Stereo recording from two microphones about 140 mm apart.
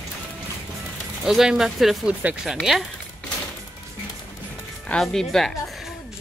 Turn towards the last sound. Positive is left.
turn(degrees=5)  # may be behind; listen again after turning